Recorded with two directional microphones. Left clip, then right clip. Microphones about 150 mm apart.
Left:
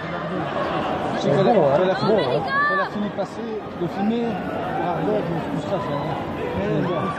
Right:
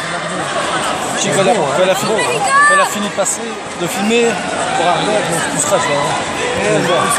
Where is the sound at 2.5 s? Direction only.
45° right (ahead or behind).